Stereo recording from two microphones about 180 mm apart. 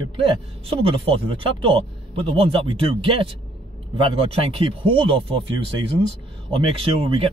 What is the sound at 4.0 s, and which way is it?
Speech, 30° right (ahead or behind).